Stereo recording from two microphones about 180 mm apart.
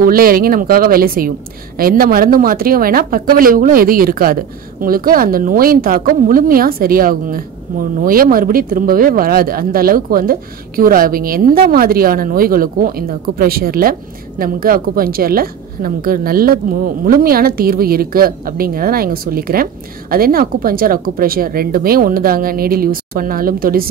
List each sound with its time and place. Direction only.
0.0 s a woman's voice: 55° right (ahead or behind)